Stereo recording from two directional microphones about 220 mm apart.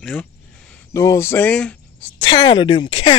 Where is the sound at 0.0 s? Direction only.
5° left (ahead or behind).